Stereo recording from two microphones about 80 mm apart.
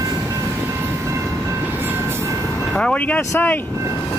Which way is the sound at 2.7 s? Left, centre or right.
Centre.